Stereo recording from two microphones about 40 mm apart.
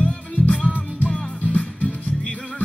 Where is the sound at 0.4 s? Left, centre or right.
Left.